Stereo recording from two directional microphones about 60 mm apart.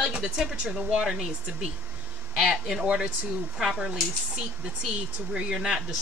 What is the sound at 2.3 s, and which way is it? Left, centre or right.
Speech, centre.